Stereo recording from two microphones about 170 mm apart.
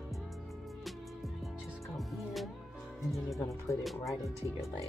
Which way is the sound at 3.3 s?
20° left (ahead or behind).